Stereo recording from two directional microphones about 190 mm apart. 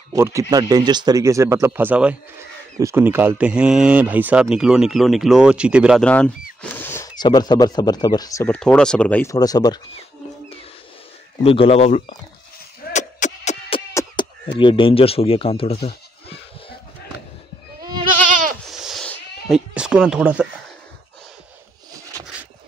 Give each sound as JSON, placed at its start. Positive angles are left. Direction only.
{"t": 0.1, "sound": "speech", "side_deg": -15}
{"t": 8.5, "sound": "speech", "side_deg": 5}
{"t": 11.4, "sound": "a man's voice", "side_deg": 30}
{"t": 12.9, "sound": "a sound", "side_deg": 35}
{"t": 14.6, "sound": "speech", "side_deg": 25}
{"t": 18.3, "sound": "goat", "side_deg": -45}
{"t": 18.7, "sound": "cat", "side_deg": 0}